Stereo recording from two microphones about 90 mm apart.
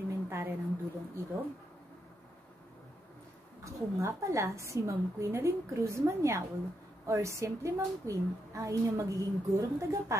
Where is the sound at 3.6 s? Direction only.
35° right (ahead or behind).